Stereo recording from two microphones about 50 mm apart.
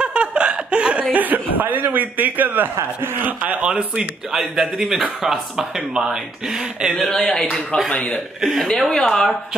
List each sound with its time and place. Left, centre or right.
0.0 s laughter: right
1.1 s speech: right
4.3 s speech: centre
7.0 s speech: centre
7.7 s speech: left
8.4 s speech: centre
8.6 s a woman's voice: centre